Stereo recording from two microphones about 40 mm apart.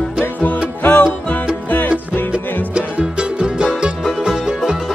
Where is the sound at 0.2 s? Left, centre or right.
Left.